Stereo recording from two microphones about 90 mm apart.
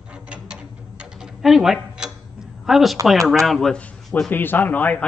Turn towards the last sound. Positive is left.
turn(degrees=20)  # may be behind; listen again after turning